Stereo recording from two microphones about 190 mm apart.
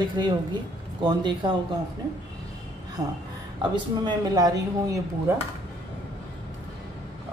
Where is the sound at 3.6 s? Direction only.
20° right (ahead or behind).